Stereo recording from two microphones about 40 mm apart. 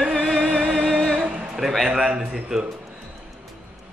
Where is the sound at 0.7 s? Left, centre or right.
Centre.